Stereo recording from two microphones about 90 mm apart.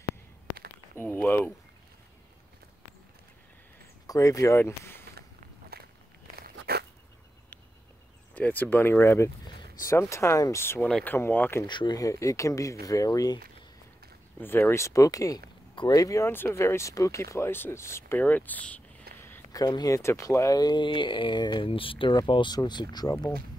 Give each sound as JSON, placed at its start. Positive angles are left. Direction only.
{"t": 0.9, "sound": "speech", "side_deg": 20}
{"t": 4.1, "sound": "speech", "side_deg": 40}
{"t": 4.6, "sound": "speech", "side_deg": 25}
{"t": 8.4, "sound": "speech", "side_deg": 20}
{"t": 11.6, "sound": "speech", "side_deg": 55}
{"t": 12.0, "sound": "speech", "side_deg": 35}
{"t": 14.4, "sound": "speech", "side_deg": 25}
{"t": 15.7, "sound": "a sound", "side_deg": 65}
{"t": 16.0, "sound": "speech", "side_deg": 40}
{"t": 19.1, "sound": "a sound", "side_deg": 25}
{"t": 19.5, "sound": "speech", "side_deg": 45}
{"t": 20.0, "sound": "speech", "side_deg": 35}
{"t": 21.6, "sound": "speech", "side_deg": 80}
{"t": 22.1, "sound": "speech", "side_deg": 60}